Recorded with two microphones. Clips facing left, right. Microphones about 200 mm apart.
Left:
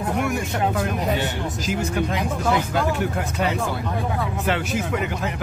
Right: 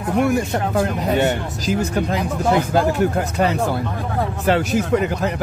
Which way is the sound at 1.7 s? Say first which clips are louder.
Right 5 dB; 35° right (ahead or behind).